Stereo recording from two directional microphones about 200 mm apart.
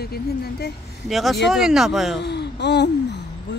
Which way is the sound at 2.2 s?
60° left (ahead or behind).